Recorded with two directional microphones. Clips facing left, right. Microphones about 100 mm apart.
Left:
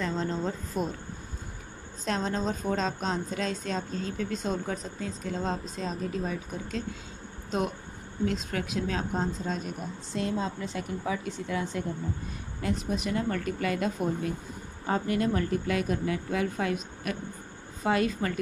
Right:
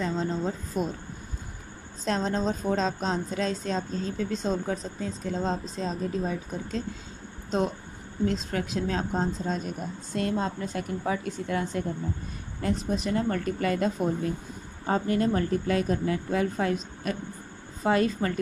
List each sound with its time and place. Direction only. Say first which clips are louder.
0.0 s speech: right 2 dB; 15° right (ahead or behind)
2.0 s a woman's voice: right 3 dB; 35° right (ahead or behind)
8.3 s a woman's voice: right 2 dB; 35° right (ahead or behind)
10.1 s a woman's voice: right 2 dB; 55° right (ahead or behind)
12.6 s a woman's voice: right 2 dB; 35° right (ahead or behind)